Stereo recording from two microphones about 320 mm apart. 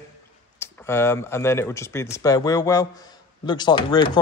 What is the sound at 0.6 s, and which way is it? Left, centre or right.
Speech, centre.